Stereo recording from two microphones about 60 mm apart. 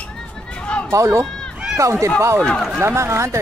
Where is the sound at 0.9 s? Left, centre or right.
Right.